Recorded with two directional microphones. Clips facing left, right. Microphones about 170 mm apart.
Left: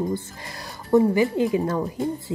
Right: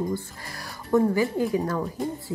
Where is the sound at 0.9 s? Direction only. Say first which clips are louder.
Left 3 dB; 20° left (ahead or behind).